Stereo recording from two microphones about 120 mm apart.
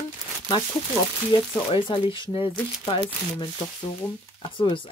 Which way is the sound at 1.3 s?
45° left (ahead or behind).